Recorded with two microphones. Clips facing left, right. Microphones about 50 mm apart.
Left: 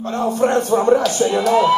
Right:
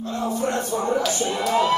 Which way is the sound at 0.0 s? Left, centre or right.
Left.